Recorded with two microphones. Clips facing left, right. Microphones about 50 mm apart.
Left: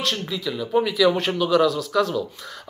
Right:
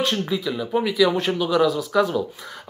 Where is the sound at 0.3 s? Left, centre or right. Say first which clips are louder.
Even; centre.